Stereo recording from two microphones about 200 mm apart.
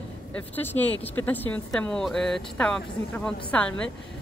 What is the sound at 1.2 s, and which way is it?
A man's voice, 10° left (ahead or behind).